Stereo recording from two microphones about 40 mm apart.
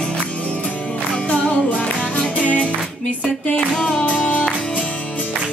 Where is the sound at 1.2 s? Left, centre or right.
Left.